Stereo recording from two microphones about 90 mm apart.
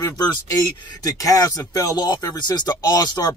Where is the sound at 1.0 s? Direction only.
40° left (ahead or behind).